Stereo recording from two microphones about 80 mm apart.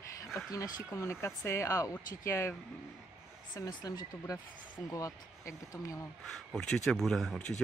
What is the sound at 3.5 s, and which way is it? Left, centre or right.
Speech, left.